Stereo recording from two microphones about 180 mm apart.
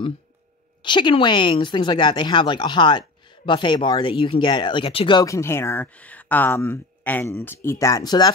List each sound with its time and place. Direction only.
0.8 s speech: 25° left (ahead or behind)